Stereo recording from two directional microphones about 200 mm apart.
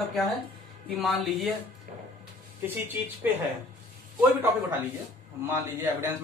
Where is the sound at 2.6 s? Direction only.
10° right (ahead or behind).